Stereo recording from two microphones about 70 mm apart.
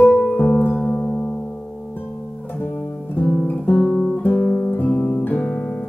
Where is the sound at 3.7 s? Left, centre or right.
Centre.